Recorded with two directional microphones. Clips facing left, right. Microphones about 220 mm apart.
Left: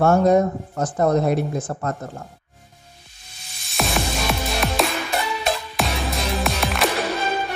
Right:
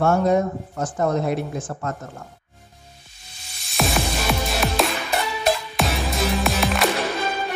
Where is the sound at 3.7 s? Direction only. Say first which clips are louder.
Right 1 dB; centre (ahead or behind).